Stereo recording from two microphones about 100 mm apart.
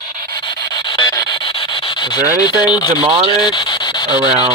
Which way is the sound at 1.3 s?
60° left (ahead or behind).